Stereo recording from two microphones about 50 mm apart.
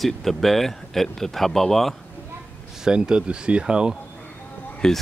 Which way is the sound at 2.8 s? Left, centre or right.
Centre.